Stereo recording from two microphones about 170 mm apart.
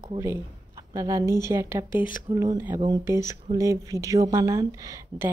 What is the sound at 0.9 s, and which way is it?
Speech, 15° right (ahead or behind).